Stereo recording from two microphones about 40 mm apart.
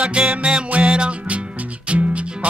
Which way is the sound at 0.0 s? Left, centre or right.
Right.